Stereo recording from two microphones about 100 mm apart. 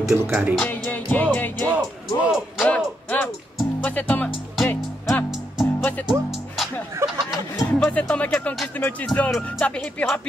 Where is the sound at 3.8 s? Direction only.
15° left (ahead or behind).